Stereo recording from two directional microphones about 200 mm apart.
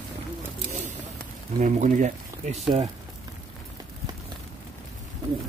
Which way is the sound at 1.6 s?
40° right (ahead or behind).